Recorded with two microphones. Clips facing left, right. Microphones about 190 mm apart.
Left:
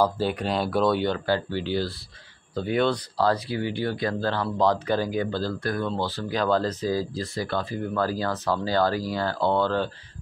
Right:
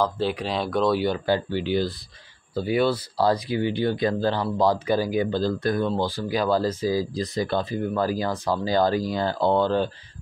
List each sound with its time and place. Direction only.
0.0 s speech: 5° left (ahead or behind)
1.0 s speech: 15° right (ahead or behind)